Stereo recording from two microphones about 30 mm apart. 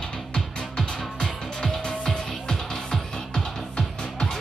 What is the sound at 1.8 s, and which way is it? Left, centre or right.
Music, left.